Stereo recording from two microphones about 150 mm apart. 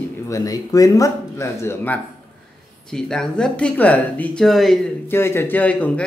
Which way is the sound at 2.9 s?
5° left (ahead or behind).